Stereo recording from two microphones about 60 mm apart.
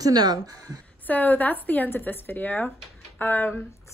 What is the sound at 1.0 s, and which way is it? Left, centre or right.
A woman's voice, left.